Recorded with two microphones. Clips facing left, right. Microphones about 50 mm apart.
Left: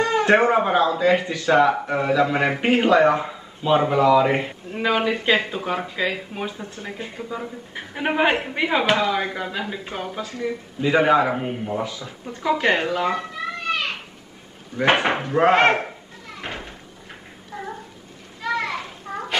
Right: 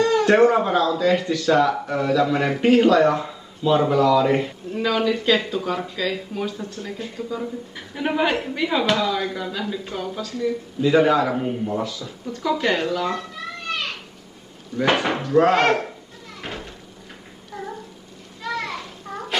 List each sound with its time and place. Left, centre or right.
0.0 s speech: left
14.8 s speech: left
16.3 s a sound: centre
18.4 s children playing: centre